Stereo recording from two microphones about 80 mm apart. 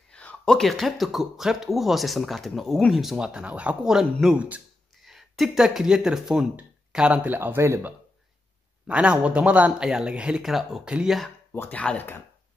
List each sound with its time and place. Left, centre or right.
0.1 s a sound: centre
0.5 s speech: centre
7.3 s speech: right
8.8 s speech: centre
9.7 s speech: centre
11.5 s speech: left